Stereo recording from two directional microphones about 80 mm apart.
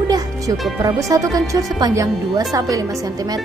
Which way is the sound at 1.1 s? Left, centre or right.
Right.